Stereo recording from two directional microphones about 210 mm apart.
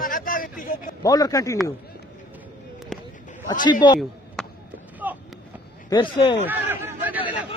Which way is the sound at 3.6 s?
20° left (ahead or behind).